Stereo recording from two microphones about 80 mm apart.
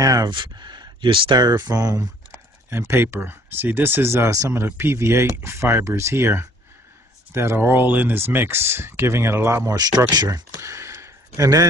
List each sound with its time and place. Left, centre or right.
0.0 s a sound: right
0.3 s speech: right
1.4 s speech: right
2.7 s speech: right
9.6 s speech: right
10.6 s a sound: right